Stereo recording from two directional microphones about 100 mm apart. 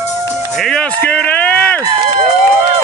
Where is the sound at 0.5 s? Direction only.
5° left (ahead or behind).